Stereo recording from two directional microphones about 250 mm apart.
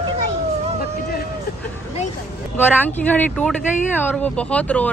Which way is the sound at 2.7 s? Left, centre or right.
Centre.